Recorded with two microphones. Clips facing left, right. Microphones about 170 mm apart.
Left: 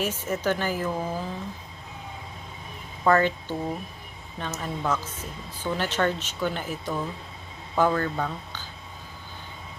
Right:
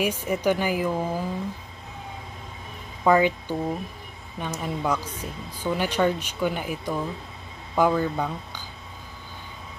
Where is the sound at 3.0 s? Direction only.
10° right (ahead or behind).